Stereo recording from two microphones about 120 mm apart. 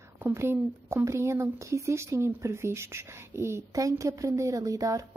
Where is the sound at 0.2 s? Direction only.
20° right (ahead or behind).